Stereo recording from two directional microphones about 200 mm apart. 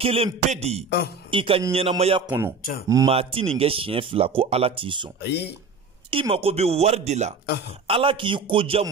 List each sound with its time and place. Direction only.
0.0 s speech: 30° right (ahead or behind)
2.2 s speech: 10° right (ahead or behind)
3.1 s speech: 30° right (ahead or behind)
5.2 s speech: 55° left (ahead or behind)
6.0 s speech: 25° right (ahead or behind)